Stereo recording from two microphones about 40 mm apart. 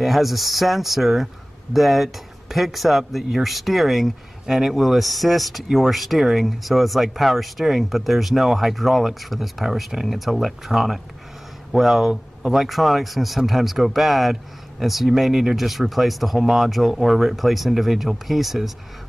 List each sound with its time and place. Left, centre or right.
0.0 s speech: centre